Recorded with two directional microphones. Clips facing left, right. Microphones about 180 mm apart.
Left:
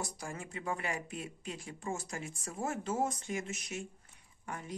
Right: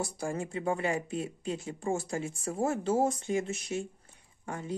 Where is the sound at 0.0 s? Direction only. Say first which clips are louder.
Right 8 dB; 30° right (ahead or behind).